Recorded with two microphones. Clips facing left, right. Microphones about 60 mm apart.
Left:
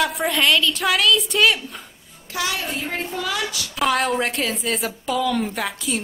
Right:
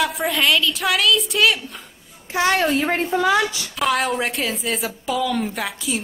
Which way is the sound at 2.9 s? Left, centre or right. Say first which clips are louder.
Right 8 dB; right.